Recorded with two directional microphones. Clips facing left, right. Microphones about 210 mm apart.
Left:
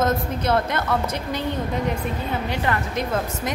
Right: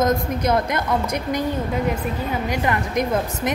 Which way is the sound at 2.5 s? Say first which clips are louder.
Right 3 dB; 15° right (ahead or behind).